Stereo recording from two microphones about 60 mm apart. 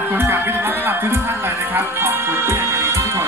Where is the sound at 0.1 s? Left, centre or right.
Right.